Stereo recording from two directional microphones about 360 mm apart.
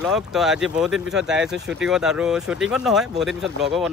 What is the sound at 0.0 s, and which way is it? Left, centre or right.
Speech, centre.